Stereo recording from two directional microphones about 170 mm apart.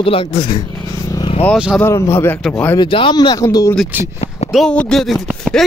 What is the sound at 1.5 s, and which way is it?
Speech, centre (ahead or behind).